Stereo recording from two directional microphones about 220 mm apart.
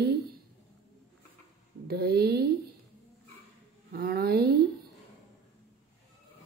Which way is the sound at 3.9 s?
45° right (ahead or behind).